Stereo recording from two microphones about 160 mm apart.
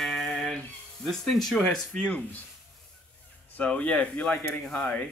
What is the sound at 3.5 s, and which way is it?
Speech, 10° left (ahead or behind).